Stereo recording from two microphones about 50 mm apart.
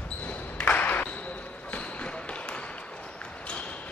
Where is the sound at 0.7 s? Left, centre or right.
Left.